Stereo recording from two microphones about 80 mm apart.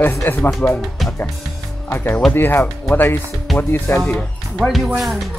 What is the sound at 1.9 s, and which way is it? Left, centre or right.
Speech, left.